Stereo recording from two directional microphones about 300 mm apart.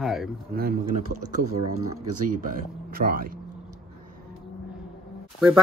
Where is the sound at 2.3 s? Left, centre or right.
Right.